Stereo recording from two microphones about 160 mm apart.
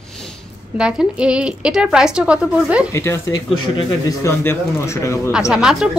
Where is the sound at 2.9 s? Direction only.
15° left (ahead or behind).